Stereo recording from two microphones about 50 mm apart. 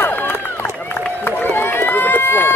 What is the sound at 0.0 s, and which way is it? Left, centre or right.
Run, left.